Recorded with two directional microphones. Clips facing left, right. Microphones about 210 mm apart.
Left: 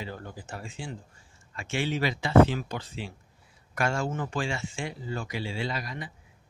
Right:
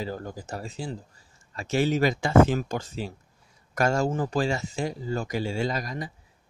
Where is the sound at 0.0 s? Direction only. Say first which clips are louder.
Right 6 dB; 40° right (ahead or behind).